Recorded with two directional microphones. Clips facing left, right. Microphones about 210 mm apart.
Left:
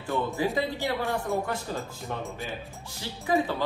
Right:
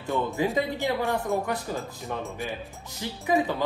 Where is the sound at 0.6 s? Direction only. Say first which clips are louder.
Right 2 dB; 15° right (ahead or behind).